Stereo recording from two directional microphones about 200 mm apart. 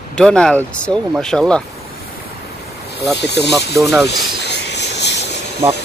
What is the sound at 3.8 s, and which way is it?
Speech, 15° right (ahead or behind).